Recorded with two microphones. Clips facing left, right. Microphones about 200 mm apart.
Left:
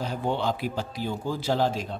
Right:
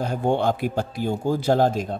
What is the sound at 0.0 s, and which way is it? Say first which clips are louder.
Speech: right 6 dB; 50° right (ahead or behind).